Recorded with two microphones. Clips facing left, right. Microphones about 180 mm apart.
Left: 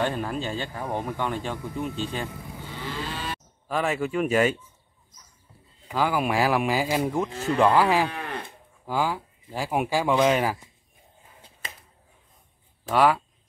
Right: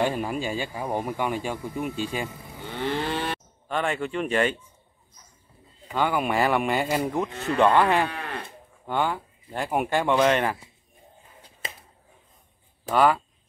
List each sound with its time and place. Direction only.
0.0 s speech: 10° right (ahead or behind)
2.8 s moo: 65° right (ahead or behind)
3.6 s speech: 5° left (ahead or behind)
5.9 s speech: centre (ahead or behind)
8.2 s livestock: 15° left (ahead or behind)
8.8 s speech: 5° left (ahead or behind)
12.8 s speech: centre (ahead or behind)